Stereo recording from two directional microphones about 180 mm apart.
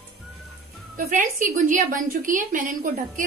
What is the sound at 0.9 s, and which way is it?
A woman's voice, 45° right (ahead or behind).